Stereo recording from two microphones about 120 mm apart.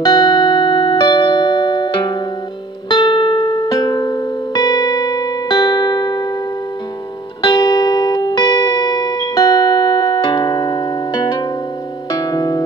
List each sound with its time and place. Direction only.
0.0 s music: 35° left (ahead or behind)
7.4 s music: 35° left (ahead or behind)